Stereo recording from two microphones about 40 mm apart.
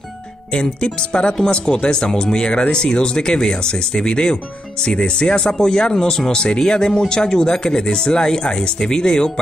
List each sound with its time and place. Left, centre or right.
0.5 s speech: left